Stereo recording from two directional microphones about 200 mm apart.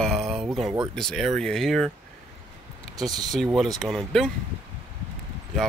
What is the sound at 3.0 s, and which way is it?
Speech, 20° right (ahead or behind).